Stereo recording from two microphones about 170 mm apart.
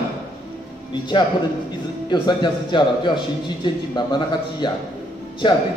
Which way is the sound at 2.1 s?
25° left (ahead or behind).